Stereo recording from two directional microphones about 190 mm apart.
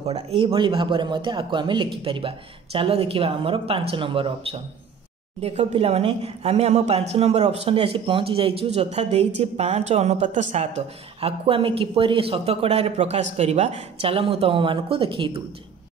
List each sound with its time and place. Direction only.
0.1 s speech: 30° right (ahead or behind)